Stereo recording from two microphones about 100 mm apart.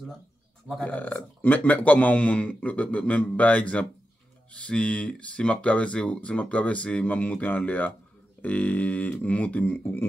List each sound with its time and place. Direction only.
0.8 s speech: 15° left (ahead or behind)